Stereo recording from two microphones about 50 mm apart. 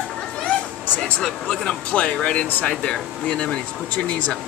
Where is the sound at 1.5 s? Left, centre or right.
Left.